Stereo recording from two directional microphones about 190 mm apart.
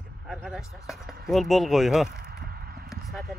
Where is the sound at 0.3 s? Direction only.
Centre (ahead or behind).